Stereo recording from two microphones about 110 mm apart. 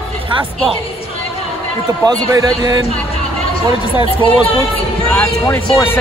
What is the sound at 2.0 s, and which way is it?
Speech, 35° right (ahead or behind).